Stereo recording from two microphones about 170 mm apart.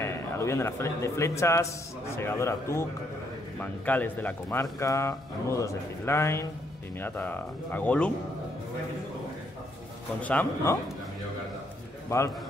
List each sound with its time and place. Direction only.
0.0 s a man's voice: 15° left (ahead or behind)
10.2 s speech: 10° left (ahead or behind)